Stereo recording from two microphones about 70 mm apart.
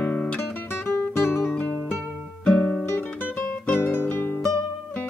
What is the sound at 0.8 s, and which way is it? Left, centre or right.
Guitar, left.